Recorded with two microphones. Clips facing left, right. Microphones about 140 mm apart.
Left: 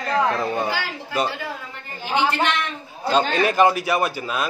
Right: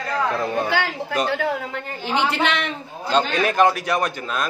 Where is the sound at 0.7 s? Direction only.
60° right (ahead or behind).